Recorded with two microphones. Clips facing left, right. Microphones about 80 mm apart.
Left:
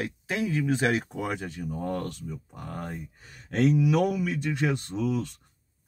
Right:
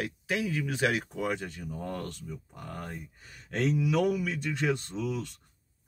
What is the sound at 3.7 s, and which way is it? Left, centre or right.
Speech, centre.